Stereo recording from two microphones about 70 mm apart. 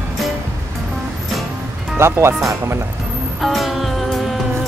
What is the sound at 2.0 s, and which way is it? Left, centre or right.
Speech, right.